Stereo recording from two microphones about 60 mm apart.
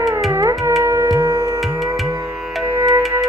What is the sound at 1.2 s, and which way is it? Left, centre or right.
Music, right.